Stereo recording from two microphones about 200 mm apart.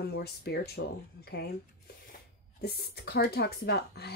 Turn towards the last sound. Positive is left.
turn(degrees=50)  # may be behind; listen again after turning